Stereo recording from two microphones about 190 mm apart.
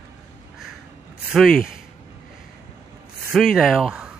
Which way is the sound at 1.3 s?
Centre (ahead or behind).